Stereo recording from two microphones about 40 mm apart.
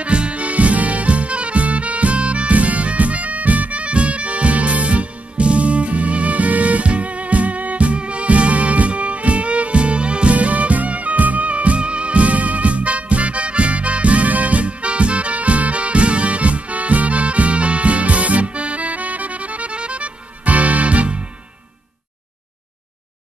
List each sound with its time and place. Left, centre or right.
0.0 s music: right